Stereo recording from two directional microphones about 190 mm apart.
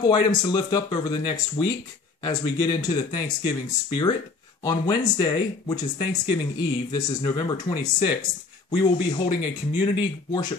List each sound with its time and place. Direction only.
0.0 s speech: 20° left (ahead or behind)